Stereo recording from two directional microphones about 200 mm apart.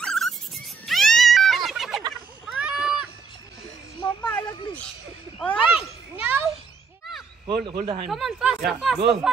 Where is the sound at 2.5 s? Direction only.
5° right (ahead or behind).